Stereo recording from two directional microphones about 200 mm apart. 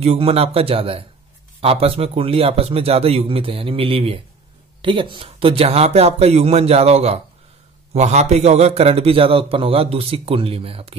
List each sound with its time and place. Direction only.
0.0 s a man's voice: 30° right (ahead or behind)